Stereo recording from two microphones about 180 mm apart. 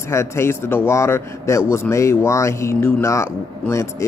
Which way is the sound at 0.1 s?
15° left (ahead or behind).